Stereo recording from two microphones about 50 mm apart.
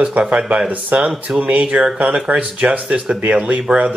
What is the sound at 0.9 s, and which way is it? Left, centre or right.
Speech, right.